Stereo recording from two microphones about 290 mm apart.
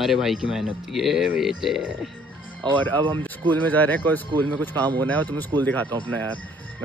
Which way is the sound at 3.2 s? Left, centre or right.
Centre.